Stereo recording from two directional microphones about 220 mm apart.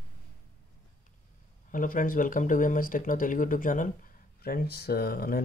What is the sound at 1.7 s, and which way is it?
Speech, 35° left (ahead or behind).